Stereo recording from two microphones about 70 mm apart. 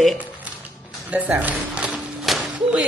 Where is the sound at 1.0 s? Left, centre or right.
Right.